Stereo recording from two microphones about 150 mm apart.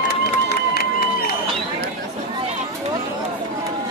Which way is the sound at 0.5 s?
90° left.